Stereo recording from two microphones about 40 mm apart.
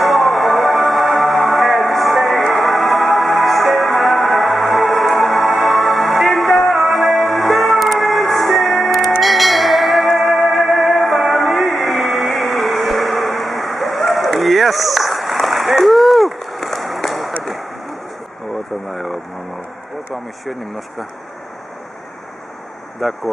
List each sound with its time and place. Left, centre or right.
0.0 s music: centre
17.4 s a sound: centre
18.5 s vehicle: centre
20.4 s speech: centre
22.9 s speech: centre